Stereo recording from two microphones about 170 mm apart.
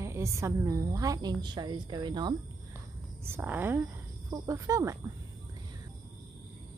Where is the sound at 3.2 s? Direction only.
10° right (ahead or behind).